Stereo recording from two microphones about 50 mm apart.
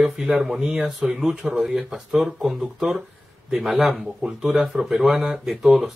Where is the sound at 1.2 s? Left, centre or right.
Centre.